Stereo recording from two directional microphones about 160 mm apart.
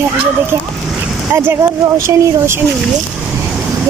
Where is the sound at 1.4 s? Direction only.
15° right (ahead or behind).